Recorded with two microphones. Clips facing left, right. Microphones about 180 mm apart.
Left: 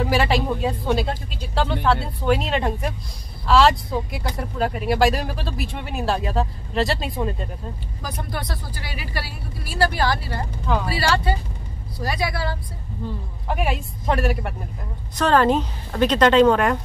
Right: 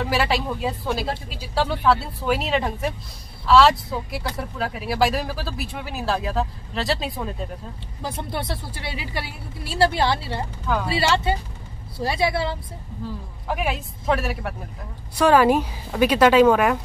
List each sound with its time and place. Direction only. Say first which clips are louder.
0.0 s speech: left 2 dB; centre (ahead or behind)
8.0 s speech: right 2 dB; 25° right (ahead or behind)
13.5 s a woman's voice: left 1 dB; centre (ahead or behind)